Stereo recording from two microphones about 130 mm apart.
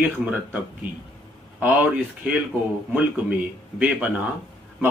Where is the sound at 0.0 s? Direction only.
10° right (ahead or behind).